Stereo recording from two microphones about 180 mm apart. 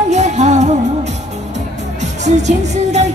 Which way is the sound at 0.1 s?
40° right (ahead or behind).